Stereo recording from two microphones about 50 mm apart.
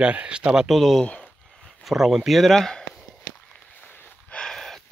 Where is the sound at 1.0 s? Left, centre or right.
Left.